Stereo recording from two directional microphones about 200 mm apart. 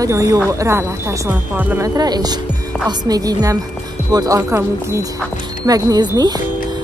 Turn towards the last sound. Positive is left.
turn(degrees=-20)  # may be behind; listen again after turning